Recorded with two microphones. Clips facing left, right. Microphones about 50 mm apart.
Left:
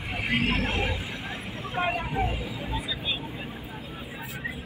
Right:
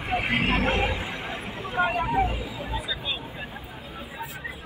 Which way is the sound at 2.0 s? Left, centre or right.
Centre.